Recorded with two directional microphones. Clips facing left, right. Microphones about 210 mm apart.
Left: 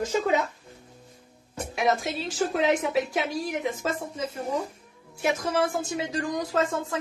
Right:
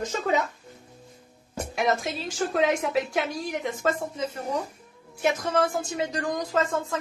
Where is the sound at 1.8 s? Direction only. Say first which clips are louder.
Left 1 dB; centre (ahead or behind).